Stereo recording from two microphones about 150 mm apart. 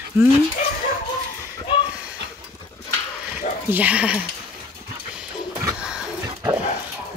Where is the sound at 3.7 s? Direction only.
10° right (ahead or behind).